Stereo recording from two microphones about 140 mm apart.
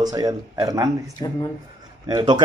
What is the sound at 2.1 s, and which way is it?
Speech, 30° right (ahead or behind).